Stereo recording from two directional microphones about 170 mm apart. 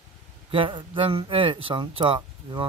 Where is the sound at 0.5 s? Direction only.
30° right (ahead or behind).